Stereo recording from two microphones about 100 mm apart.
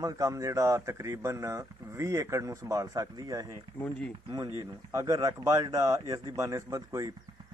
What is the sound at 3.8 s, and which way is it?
Speech, 20° left (ahead or behind).